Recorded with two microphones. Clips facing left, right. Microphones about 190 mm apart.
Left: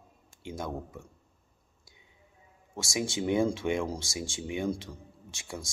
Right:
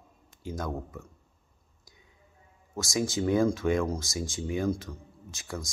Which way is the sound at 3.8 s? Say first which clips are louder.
Right 3 dB; 30° left (ahead or behind).